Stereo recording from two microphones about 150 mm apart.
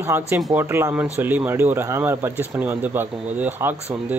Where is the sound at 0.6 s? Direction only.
15° right (ahead or behind).